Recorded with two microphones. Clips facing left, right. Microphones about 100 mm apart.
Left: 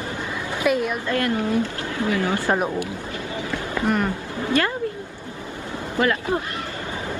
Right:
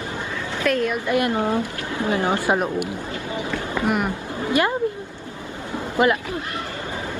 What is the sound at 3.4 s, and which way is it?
Run, 20° right (ahead or behind).